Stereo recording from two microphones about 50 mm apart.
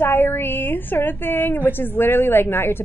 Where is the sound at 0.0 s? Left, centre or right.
Left.